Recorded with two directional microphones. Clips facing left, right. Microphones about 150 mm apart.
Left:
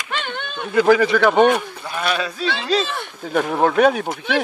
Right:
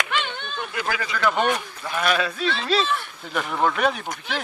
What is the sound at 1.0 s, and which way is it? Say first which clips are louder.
Speech: left 9 dB; 70° left (ahead or behind).